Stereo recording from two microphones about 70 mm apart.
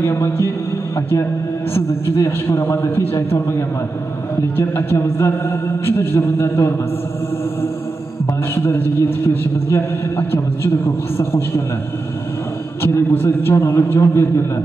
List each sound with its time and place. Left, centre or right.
0.0 s a man's voice: left
1.7 s a man's voice: left
8.5 s a man's voice: left
12.8 s a man's voice: left